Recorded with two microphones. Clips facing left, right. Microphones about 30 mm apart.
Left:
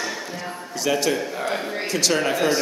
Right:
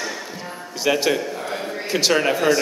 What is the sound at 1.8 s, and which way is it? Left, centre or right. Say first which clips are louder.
Speech: right 3 dB; right.